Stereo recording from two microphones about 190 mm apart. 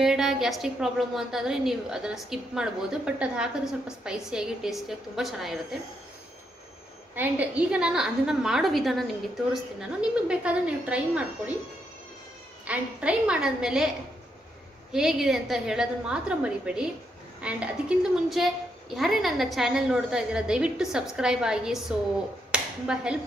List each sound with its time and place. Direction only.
0.0 s a woman's voice: centre (ahead or behind)
7.2 s a woman's voice: 5° right (ahead or behind)
12.6 s a woman's voice: 5° right (ahead or behind)
14.9 s a woman's voice: 5° right (ahead or behind)
22.5 s clapping: 5° right (ahead or behind)